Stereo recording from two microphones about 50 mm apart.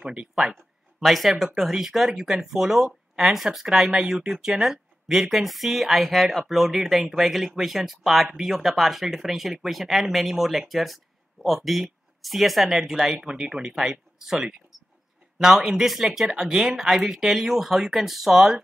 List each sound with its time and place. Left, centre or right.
0.0 s speech: centre
0.9 s speech: centre